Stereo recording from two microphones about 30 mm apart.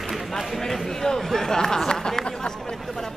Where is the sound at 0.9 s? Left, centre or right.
Centre.